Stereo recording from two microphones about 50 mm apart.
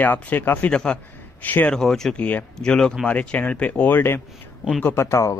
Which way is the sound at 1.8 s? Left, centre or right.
Centre.